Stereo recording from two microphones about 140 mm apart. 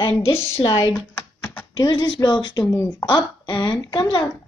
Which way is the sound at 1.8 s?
35° left (ahead or behind).